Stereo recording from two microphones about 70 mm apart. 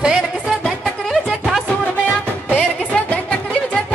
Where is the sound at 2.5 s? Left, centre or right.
Centre.